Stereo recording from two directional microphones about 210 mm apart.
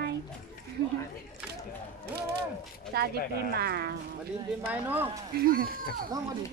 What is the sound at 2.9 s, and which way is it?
Speech, 50° right (ahead or behind).